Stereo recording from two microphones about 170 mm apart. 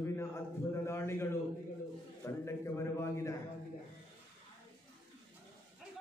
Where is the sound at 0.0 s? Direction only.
15° left (ahead or behind).